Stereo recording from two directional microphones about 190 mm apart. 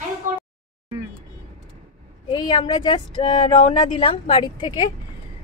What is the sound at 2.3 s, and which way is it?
Speech, 25° left (ahead or behind).